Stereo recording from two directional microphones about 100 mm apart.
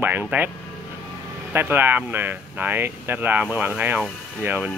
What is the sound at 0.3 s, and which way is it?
Speech, 20° right (ahead or behind).